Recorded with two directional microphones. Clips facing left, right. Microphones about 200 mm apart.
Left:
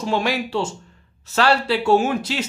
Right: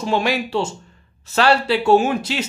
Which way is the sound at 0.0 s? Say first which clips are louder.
Right 2 dB; 20° right (ahead or behind).